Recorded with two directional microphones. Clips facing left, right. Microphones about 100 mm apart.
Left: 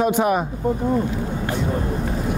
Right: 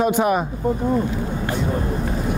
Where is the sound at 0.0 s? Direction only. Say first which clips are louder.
Even; 30° right (ahead or behind).